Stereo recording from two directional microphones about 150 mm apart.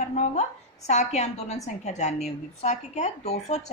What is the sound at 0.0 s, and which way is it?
A woman's voice, 50° left (ahead or behind).